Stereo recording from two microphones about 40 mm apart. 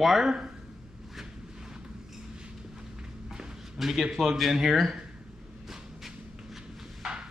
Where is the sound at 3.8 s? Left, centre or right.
Centre.